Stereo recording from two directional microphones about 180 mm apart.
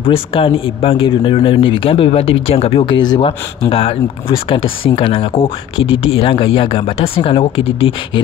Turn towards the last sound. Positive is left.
turn(degrees=30)  # may be behind; listen again after turning